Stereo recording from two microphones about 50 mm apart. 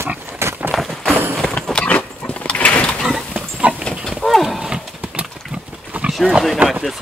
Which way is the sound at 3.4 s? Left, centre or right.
Right.